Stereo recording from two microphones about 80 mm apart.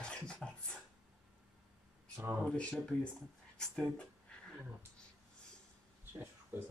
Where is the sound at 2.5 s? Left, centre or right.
Centre.